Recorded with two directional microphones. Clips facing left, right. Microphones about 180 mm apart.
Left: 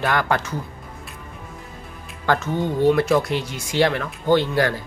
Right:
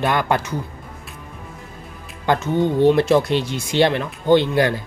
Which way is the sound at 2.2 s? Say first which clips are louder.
Right 3 dB; 20° right (ahead or behind).